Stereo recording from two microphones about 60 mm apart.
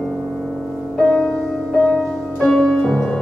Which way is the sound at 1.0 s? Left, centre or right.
Centre.